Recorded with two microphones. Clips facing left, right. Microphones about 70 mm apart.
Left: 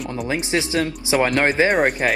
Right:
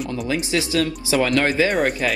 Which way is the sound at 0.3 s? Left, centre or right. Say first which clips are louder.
Left 1 dB; left.